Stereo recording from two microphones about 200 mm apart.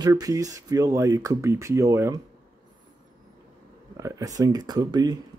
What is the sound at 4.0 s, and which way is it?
Speech, 15° right (ahead or behind).